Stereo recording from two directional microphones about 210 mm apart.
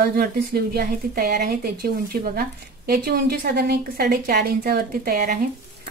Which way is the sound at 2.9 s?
45° right (ahead or behind).